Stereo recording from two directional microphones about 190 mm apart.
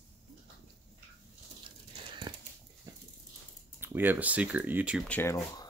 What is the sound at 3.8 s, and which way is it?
Speech, 10° right (ahead or behind).